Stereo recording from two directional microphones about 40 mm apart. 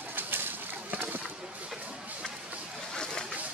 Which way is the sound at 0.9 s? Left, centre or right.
Right.